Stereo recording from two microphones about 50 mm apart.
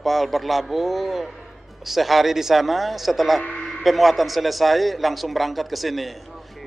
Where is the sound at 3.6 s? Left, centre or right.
Centre.